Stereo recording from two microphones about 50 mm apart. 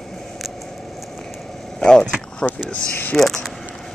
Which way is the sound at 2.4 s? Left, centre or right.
Left.